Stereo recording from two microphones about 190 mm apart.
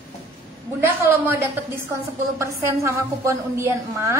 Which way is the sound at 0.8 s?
15° right (ahead or behind).